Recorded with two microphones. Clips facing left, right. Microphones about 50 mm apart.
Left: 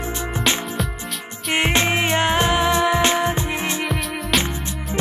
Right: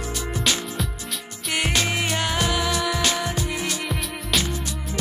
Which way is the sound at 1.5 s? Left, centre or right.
Left.